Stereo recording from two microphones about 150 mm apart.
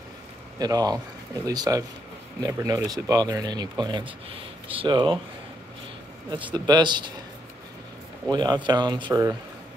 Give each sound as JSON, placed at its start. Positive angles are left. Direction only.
{"t": 0.6, "sound": "speech", "side_deg": -25}
{"t": 6.5, "sound": "speech", "side_deg": -30}
{"t": 8.3, "sound": "speech", "side_deg": -30}